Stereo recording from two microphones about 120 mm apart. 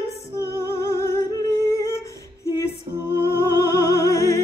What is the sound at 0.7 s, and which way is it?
Humming, 20° left (ahead or behind).